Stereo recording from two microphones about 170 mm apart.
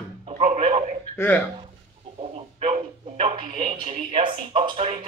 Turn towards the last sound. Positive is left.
turn(degrees=-30)  # may be behind; listen again after turning